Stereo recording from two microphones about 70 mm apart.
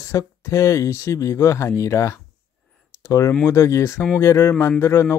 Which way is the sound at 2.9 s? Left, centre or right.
Left.